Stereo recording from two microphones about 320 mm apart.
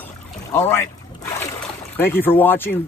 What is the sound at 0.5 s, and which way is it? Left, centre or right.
Speech, centre.